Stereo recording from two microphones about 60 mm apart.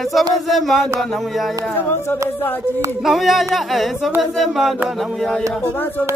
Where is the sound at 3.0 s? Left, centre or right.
Centre.